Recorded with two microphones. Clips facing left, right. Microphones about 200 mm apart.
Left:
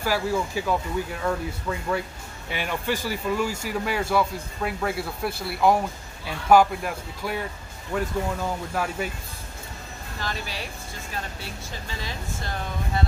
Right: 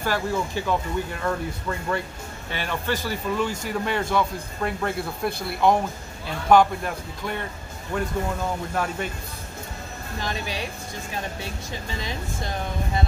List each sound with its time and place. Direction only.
0.0 s speech: 5° left (ahead or behind)
10.2 s speech: 20° right (ahead or behind)